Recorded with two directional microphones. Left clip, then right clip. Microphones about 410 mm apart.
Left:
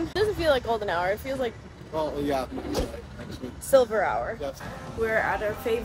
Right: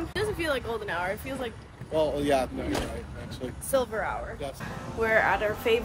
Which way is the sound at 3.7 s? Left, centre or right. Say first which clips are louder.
Left 7 dB; centre.